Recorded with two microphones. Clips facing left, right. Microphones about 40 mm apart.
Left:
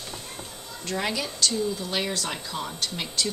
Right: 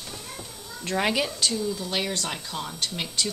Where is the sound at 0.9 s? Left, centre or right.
Right.